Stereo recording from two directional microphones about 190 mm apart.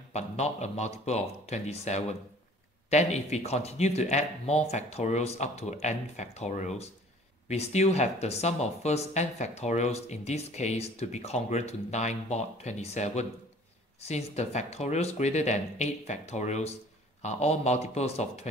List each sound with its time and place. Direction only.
0.1 s speech: 35° left (ahead or behind)